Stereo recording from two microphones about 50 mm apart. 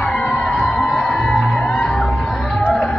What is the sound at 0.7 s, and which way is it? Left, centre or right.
Music, centre.